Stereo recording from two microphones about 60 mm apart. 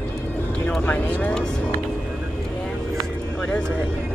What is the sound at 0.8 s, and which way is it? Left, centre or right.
Speech, left.